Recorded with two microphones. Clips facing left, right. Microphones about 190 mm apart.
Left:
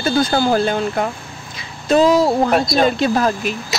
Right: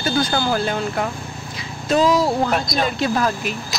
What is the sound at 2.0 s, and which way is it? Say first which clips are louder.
Speech: left 4 dB; 25° left (ahead or behind).